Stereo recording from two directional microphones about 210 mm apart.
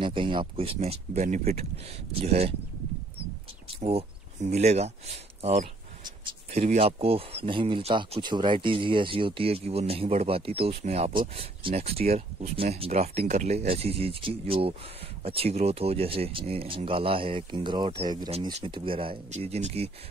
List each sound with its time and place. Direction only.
0.0 s speech: 25° right (ahead or behind)
3.6 s speech: 30° right (ahead or behind)